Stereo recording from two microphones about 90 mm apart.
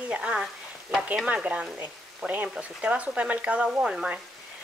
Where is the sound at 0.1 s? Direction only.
10° right (ahead or behind).